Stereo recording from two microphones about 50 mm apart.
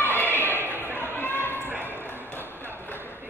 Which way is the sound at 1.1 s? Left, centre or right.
Left.